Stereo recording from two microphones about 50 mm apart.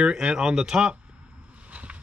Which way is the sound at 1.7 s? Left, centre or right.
Right.